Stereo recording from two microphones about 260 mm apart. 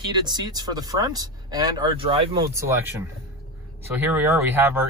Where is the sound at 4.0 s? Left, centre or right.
Centre.